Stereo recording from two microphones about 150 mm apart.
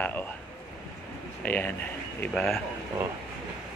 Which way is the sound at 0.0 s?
10° left (ahead or behind).